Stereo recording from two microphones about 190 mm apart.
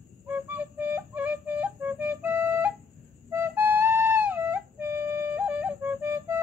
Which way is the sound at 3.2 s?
10° right (ahead or behind).